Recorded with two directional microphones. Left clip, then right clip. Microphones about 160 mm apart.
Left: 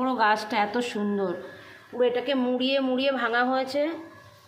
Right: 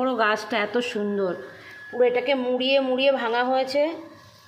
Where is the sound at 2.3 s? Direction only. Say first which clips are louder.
Right 4 dB; 5° right (ahead or behind).